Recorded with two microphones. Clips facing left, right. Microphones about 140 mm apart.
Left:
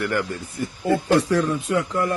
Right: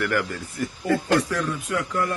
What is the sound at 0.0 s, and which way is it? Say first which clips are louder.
Speech: left 1 dB; 20° left (ahead or behind).